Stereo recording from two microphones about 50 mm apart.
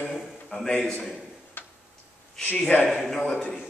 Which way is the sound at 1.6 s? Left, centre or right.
Left.